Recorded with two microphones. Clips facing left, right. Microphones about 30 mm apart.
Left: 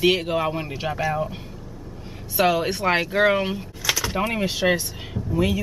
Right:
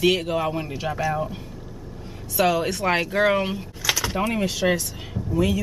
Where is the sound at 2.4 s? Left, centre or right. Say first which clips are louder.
Left 1 dB; centre.